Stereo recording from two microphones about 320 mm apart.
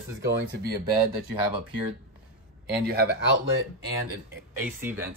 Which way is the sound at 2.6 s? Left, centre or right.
Right.